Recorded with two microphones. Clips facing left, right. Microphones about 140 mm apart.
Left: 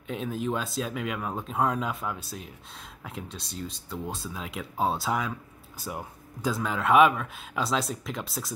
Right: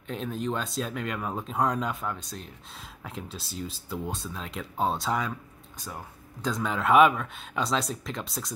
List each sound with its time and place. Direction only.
0.0 s speech: 5° left (ahead or behind)
5.9 s speech: 15° left (ahead or behind)
6.5 s speech: centre (ahead or behind)